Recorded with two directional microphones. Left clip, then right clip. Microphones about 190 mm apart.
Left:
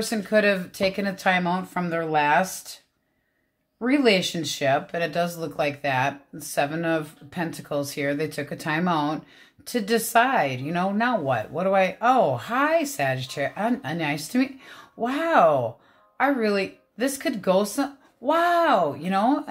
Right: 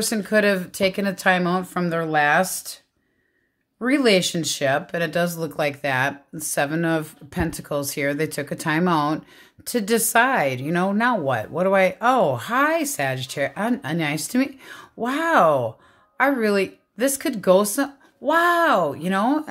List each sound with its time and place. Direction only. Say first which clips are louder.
0.0 s speech: right 1 dB; 45° right (ahead or behind)
3.8 s speech: right 2 dB; 45° right (ahead or behind)